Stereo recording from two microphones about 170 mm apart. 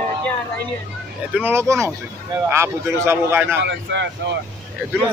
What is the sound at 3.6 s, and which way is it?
Speech, 90° right.